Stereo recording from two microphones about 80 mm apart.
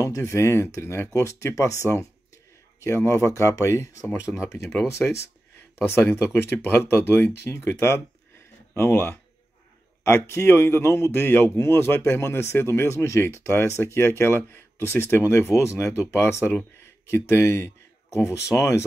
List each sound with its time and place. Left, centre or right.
0.0 s a man's voice: left
2.8 s a man's voice: left